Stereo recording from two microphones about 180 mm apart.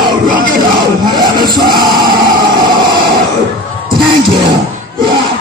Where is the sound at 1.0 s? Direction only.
25° right (ahead or behind).